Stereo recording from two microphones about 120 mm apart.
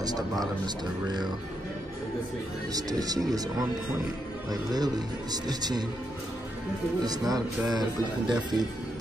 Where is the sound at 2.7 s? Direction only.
30° right (ahead or behind).